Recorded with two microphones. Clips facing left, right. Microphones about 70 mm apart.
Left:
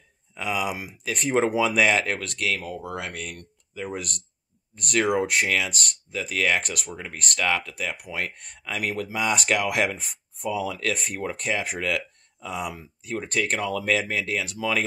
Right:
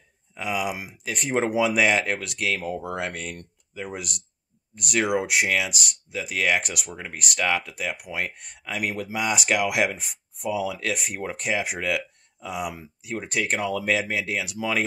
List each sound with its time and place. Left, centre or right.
0.3 s speech: centre
2.3 s speech: right
3.8 s speech: centre